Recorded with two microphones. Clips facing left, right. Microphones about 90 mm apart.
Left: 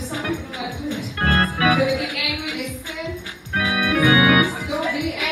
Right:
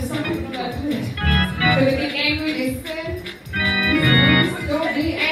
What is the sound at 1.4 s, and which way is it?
Music, 40° left (ahead or behind).